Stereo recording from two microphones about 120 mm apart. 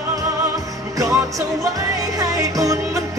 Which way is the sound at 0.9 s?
25° right (ahead or behind).